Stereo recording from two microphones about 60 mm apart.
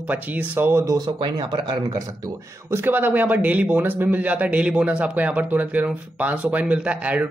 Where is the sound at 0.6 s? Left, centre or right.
Right.